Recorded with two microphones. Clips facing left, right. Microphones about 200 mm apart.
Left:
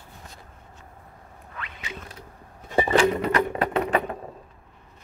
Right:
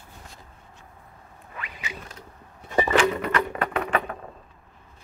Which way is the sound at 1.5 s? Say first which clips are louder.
Even; 5° right (ahead or behind).